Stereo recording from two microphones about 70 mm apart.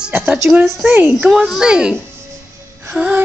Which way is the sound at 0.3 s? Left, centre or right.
Centre.